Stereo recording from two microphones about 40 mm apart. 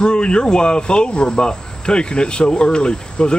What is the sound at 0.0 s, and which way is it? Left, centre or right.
Speech, left.